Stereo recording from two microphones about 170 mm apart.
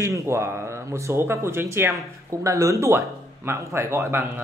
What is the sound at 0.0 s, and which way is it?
Speech, 15° right (ahead or behind).